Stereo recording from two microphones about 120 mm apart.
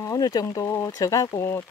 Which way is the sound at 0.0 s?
30° left (ahead or behind).